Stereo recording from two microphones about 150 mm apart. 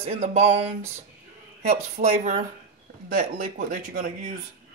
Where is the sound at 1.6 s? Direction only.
45° right (ahead or behind).